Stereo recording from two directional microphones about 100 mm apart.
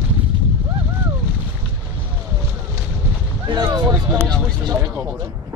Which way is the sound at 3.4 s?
45° right (ahead or behind).